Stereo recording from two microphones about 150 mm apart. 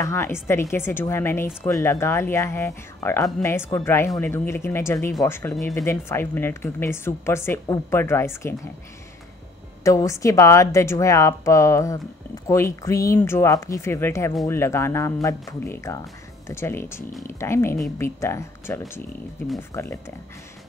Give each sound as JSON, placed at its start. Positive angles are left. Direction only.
{"t": 0.0, "sound": "a woman's voice", "side_deg": 15}
{"t": 9.8, "sound": "a woman's voice", "side_deg": 20}